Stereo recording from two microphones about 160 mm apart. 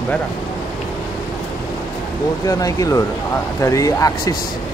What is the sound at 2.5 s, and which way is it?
Speech, 20° left (ahead or behind).